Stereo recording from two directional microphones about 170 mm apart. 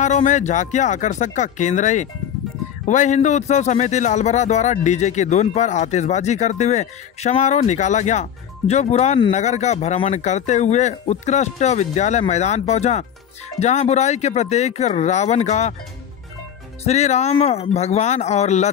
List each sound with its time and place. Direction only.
0.0 s a man's voice: 45° left (ahead or behind)
16.8 s speech: 40° left (ahead or behind)